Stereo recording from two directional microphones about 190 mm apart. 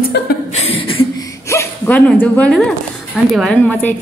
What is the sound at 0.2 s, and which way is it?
Chuckle, 65° left (ahead or behind).